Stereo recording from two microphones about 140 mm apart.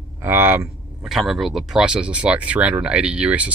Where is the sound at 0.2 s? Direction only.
15° right (ahead or behind).